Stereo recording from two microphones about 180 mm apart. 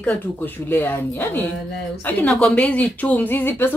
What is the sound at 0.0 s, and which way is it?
Speech, 10° left (ahead or behind).